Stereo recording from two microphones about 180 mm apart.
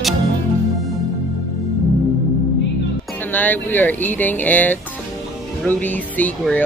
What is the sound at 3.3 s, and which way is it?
Speech, 10° left (ahead or behind).